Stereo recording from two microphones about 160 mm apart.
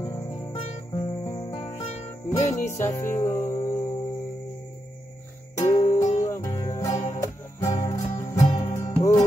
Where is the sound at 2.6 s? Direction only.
15° left (ahead or behind).